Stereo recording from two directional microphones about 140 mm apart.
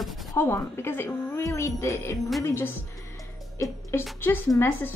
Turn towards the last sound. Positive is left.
turn(degrees=20)  # may be behind; listen again after turning